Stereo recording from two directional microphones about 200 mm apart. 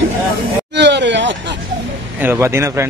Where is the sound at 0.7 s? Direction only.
60° right (ahead or behind).